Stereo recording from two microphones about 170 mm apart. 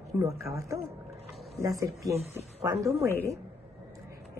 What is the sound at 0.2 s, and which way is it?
Speech, 20° right (ahead or behind).